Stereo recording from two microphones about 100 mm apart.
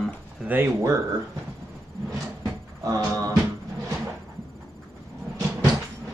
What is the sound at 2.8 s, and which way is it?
Music, 35° right (ahead or behind).